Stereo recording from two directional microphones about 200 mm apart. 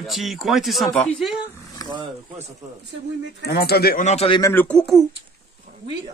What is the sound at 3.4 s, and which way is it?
Speech, 50° left (ahead or behind).